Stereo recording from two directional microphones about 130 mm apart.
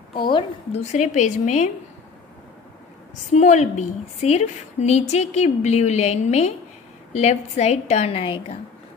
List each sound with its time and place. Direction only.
0.1 s a woman's voice: 40° left (ahead or behind)
0.7 s a woman's voice: 60° left (ahead or behind)
3.3 s a woman's voice: 65° left (ahead or behind); by 8.5 s 45° left (ahead or behind)